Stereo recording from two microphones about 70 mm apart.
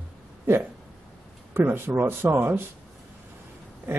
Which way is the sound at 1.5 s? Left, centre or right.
Right.